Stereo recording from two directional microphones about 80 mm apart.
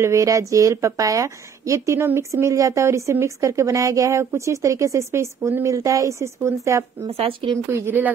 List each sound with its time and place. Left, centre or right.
0.0 s a woman's voice: right
7.7 s speech: right